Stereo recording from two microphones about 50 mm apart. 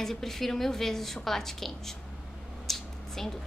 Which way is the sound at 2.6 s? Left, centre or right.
Centre.